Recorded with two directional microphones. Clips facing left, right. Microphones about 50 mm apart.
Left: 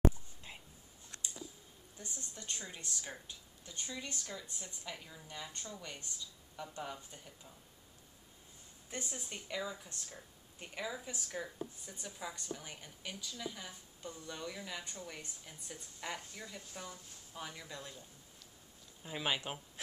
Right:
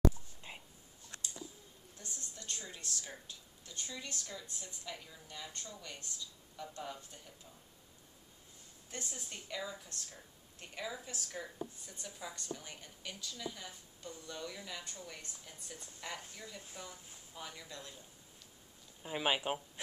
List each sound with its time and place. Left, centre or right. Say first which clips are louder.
0.4 s whispering: right 2 dB; centre
2.0 s speech: left 2 dB; left
9.0 s speech: left 2 dB; centre
17.3 s speech: left 2 dB; centre
19.0 s speech: right 3 dB; centre